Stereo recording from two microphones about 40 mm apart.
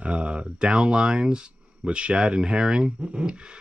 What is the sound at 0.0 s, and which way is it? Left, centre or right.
Speech, right.